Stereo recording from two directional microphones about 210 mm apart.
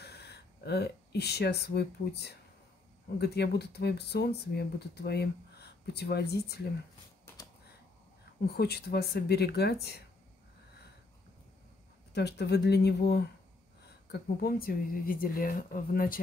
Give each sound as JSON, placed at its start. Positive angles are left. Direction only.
{"t": 0.0, "sound": "speech", "side_deg": 50}
{"t": 8.5, "sound": "speech", "side_deg": 50}
{"t": 12.1, "sound": "speech", "side_deg": 50}